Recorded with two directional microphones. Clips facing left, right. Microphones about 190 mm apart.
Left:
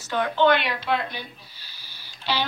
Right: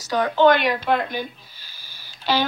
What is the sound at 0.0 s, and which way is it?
A woman's voice, 40° right (ahead or behind).